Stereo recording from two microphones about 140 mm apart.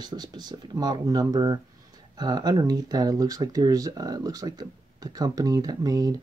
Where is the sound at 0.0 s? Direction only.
30° right (ahead or behind).